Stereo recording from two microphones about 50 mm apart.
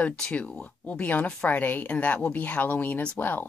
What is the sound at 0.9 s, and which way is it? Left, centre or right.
Speech, left.